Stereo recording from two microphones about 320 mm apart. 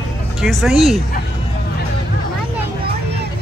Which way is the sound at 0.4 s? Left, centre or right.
Centre.